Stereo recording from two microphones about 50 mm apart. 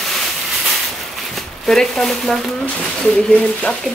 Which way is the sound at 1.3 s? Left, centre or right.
Centre.